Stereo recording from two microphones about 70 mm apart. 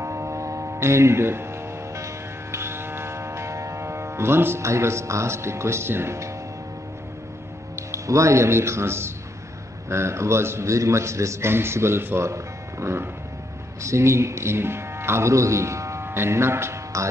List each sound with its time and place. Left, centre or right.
0.0 s music: right
7.9 s a man's voice: right